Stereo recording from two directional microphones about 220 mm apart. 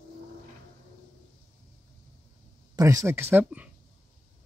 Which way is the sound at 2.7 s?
15° right (ahead or behind).